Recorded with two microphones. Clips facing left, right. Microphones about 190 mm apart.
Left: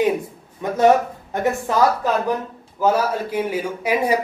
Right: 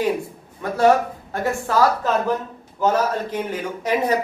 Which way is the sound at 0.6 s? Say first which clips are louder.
Left 1 dB; 20° left (ahead or behind).